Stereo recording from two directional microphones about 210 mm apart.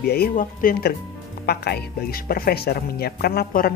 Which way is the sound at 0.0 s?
45° left (ahead or behind).